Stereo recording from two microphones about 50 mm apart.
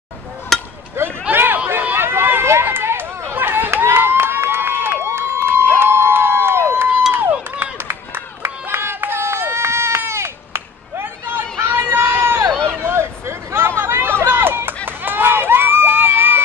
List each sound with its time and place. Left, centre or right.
0.5 s a sound: centre
1.3 s chatter: right
1.7 s run: right
2.0 s run: right
3.8 s crowd: right
7.1 s crowd: right
7.7 s run: right
12.5 s a sound: centre
12.8 s hubbub: right
14.9 s run: right